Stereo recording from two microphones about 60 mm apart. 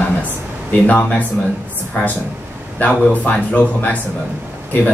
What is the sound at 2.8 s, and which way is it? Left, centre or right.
Speech, left.